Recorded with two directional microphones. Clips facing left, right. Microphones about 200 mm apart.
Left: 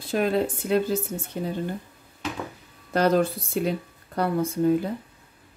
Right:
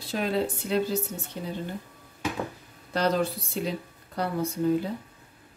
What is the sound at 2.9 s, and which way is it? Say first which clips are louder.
Speech: left 4 dB; 50° left (ahead or behind).